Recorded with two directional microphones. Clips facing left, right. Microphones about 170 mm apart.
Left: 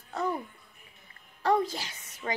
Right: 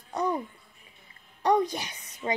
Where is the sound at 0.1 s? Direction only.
15° right (ahead or behind).